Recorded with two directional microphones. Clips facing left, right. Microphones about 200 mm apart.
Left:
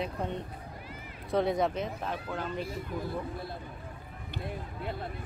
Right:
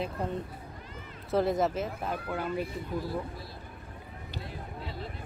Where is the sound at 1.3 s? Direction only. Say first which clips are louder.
Right 1 dB; centre (ahead or behind).